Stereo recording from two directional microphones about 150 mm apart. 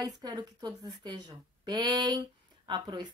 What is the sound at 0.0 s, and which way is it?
A woman's voice, 30° right (ahead or behind).